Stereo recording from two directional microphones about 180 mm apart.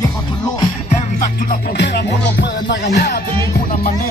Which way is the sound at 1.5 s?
70° left (ahead or behind).